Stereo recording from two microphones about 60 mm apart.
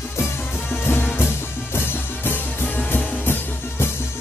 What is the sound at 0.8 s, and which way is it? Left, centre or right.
Music, left.